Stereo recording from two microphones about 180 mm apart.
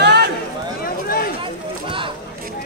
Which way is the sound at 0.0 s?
65° right (ahead or behind).